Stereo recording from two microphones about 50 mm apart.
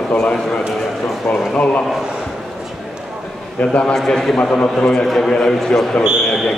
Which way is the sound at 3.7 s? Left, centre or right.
Centre.